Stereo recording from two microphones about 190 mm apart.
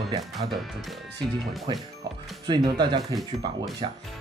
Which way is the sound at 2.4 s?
25° right (ahead or behind).